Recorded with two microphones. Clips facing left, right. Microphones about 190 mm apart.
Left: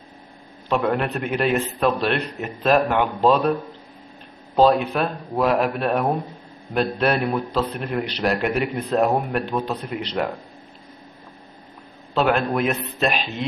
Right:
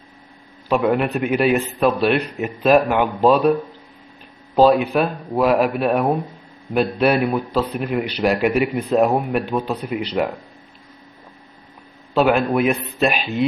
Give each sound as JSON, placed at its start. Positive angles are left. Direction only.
{"t": 0.7, "sound": "a man's voice", "side_deg": -10}
{"t": 4.6, "sound": "a man's voice", "side_deg": -5}
{"t": 12.1, "sound": "a man's voice", "side_deg": -5}